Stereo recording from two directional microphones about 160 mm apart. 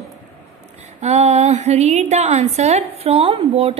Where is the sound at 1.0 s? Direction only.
40° right (ahead or behind).